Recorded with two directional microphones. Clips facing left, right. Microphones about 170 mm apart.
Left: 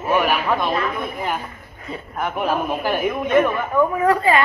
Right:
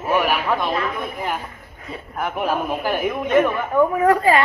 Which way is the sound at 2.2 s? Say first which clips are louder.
Left 1 dB; 10° right (ahead or behind).